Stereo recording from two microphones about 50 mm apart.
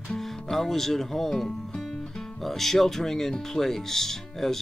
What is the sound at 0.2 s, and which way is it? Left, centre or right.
Speech, centre.